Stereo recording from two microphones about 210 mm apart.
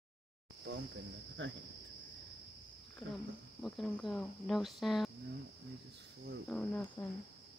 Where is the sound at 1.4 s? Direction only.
65° right (ahead or behind).